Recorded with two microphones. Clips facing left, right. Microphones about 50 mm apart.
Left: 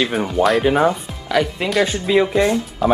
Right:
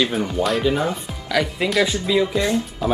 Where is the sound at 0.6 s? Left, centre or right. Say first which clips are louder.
Left 5 dB; left.